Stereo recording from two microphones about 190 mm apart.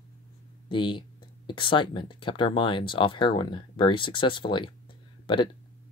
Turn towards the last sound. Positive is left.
turn(degrees=25)  # may be behind; listen again after turning